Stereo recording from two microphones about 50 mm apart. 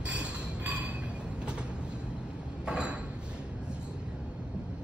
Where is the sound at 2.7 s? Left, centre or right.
Centre.